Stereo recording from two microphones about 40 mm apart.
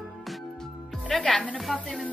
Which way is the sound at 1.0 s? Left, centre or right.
Centre.